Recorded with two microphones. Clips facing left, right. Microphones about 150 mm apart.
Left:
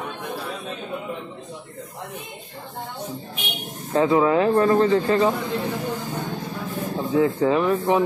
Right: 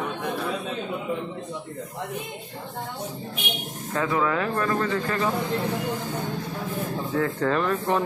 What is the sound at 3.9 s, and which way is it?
Speech, 25° left (ahead or behind).